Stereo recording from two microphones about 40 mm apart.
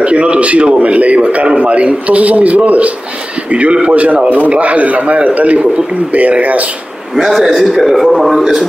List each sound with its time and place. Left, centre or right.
0.0 s a man's voice: right
7.2 s a man's voice: centre